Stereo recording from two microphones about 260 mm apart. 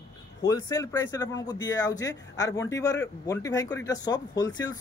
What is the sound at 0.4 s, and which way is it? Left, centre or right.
Speech, centre.